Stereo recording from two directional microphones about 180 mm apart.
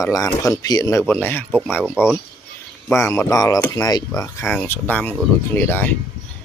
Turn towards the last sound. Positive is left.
turn(degrees=10)  # may be behind; listen again after turning